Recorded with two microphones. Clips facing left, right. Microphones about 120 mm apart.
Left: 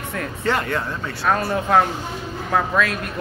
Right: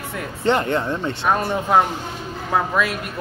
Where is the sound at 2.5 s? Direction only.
10° right (ahead or behind).